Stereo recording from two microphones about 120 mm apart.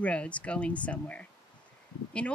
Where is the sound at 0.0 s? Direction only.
10° left (ahead or behind).